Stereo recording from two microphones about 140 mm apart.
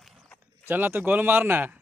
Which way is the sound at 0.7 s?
15° right (ahead or behind).